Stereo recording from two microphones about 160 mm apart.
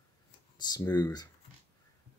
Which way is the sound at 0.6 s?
25° left (ahead or behind).